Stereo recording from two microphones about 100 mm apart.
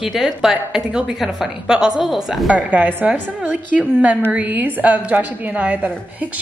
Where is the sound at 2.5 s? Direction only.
15° right (ahead or behind).